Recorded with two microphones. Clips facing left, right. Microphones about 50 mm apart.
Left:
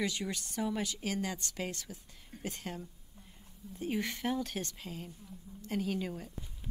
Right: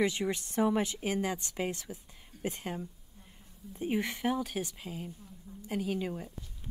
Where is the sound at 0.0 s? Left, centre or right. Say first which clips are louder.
Right 6 dB; right.